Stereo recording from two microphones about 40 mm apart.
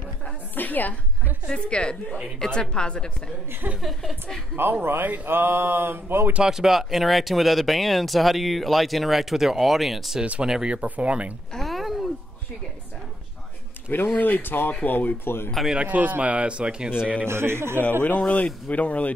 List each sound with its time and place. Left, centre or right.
0.6 s a sound: left
1.5 s a woman's voice: left
3.8 s speech: centre
4.6 s speech: right
6.4 s speech: centre
10.4 s speech: centre
10.8 s speech: right
11.5 s a sound: centre
13.8 s speech: left
15.2 s speech: left
15.9 s speech: right
17.3 s a man's voice: right
18.0 s speech: left